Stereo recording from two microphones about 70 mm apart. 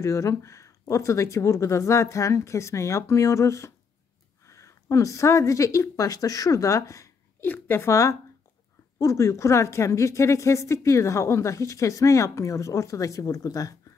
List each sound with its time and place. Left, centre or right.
0.0 s a woman's voice: left
7.3 s speech: left
7.9 s a woman's voice: left